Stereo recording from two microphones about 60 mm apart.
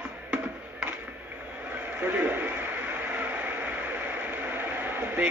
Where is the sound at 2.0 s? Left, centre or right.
Right.